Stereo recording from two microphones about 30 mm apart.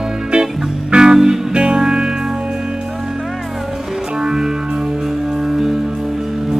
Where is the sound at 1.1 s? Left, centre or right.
Centre.